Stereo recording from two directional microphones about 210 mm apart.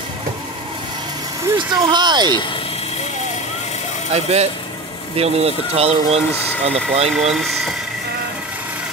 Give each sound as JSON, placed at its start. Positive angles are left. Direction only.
{"t": 1.6, "sound": "speech", "side_deg": -20}
{"t": 4.1, "sound": "speech", "side_deg": -30}
{"t": 7.2, "sound": "speech", "side_deg": 0}